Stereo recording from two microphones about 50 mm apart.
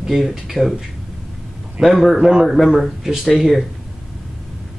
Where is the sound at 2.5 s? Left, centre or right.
Centre.